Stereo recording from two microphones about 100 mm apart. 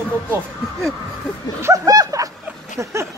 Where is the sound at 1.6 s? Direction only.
30° right (ahead or behind).